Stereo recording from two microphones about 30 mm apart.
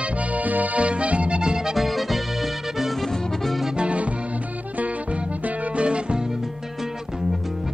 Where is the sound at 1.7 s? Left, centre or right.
Centre.